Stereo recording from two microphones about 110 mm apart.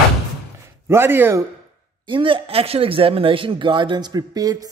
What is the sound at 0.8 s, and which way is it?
Speech, 20° right (ahead or behind).